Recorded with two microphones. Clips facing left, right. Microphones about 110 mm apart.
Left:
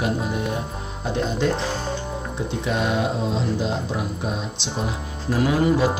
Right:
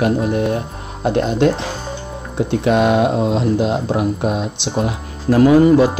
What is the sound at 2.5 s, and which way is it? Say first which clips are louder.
Speech: right 10 dB; 70° right (ahead or behind).